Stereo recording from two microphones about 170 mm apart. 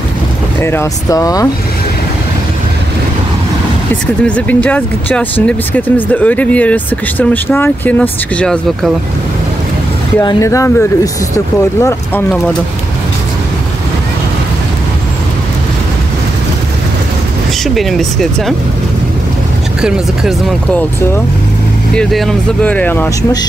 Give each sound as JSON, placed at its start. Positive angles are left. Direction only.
{"t": 0.6, "sound": "speech", "side_deg": 15}
{"t": 3.9, "sound": "speech", "side_deg": 10}
{"t": 10.2, "sound": "speech", "side_deg": 20}
{"t": 17.7, "sound": "speech", "side_deg": 0}
{"t": 21.9, "sound": "speech", "side_deg": 5}